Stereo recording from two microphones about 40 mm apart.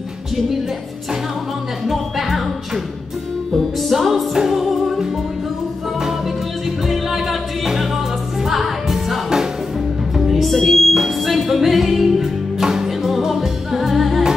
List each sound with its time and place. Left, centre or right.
1.9 s music: centre
3.5 s music: centre
6.9 s music: centre
10.4 s music: centre